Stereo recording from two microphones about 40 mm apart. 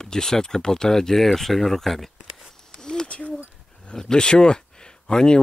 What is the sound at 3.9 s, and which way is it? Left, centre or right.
Speech, centre.